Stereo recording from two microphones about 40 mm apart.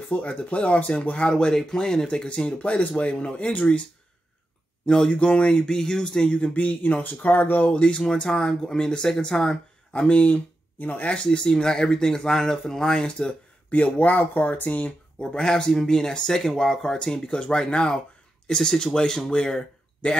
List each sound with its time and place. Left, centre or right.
0.1 s speech: left
1.3 s speech: centre
2.0 s speech: left
4.8 s speech: centre
5.1 s a man's voice: left
6.3 s speech: left
7.7 s a man's voice: left
9.9 s speech: left
10.8 s speech: left
11.3 s speech: left
13.7 s speech: left
15.3 s speech: centre
17.0 s a man's voice: left